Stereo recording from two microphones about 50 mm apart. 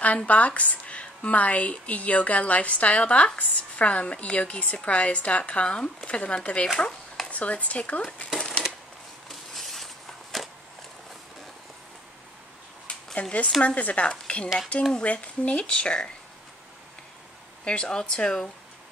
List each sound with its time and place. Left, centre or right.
0.3 s a woman's voice: left
9.3 s a sound: centre
10.3 s walk: centre
12.8 s a sound: left
13.6 s a woman's voice: left
17.6 s a woman's voice: centre